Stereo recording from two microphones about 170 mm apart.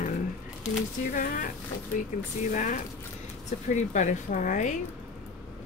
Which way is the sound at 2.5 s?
50° left (ahead or behind).